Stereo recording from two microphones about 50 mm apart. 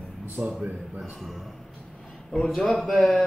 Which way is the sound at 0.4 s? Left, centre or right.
Right.